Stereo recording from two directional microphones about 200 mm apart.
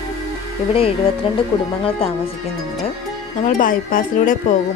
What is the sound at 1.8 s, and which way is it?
Speech, 30° left (ahead or behind).